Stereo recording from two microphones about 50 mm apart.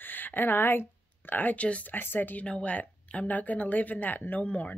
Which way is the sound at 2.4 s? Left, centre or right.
Left.